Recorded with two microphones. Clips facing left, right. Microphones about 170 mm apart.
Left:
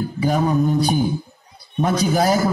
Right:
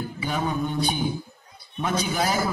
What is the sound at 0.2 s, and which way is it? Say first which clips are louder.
A man's voice: left 9 dB; 40° left (ahead or behind).